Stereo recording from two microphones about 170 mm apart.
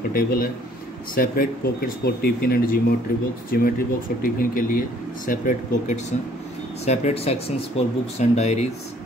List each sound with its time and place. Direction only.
0.1 s speech: 60° left (ahead or behind)
6.8 s speech: 40° left (ahead or behind)